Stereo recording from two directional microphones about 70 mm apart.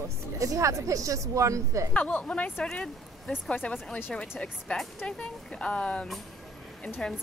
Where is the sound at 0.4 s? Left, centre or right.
Right.